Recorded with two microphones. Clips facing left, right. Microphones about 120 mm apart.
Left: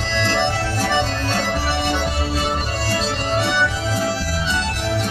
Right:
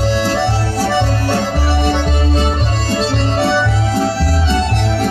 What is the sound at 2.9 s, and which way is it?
Music, 30° right (ahead or behind).